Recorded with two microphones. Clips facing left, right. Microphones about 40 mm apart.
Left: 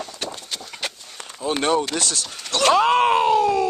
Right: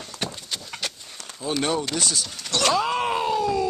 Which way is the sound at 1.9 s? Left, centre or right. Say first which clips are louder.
Left 1 dB; left.